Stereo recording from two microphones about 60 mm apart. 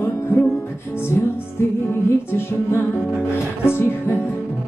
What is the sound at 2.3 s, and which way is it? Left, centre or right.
Music, left.